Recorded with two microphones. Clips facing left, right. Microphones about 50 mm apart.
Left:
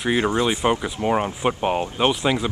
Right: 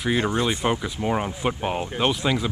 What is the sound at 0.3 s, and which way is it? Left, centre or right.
Speech, left.